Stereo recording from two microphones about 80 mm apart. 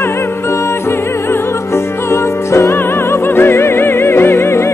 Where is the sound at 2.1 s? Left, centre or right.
Left.